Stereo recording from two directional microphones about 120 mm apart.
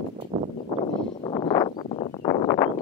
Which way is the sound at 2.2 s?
35° left (ahead or behind).